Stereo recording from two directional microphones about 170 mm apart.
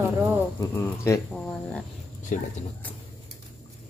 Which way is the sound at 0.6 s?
15° left (ahead or behind).